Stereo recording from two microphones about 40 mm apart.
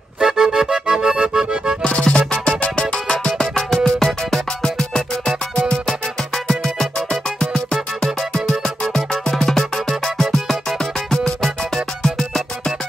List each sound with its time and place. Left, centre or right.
0.2 s accordion: centre
1.9 s music: left
3.1 s music: centre